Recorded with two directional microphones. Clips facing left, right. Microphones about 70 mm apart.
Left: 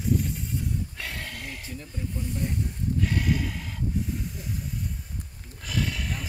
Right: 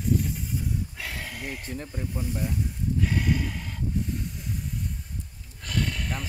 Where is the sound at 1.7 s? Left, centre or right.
Right.